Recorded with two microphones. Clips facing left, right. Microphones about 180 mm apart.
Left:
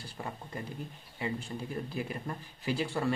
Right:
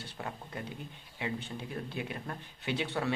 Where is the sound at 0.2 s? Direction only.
Centre (ahead or behind).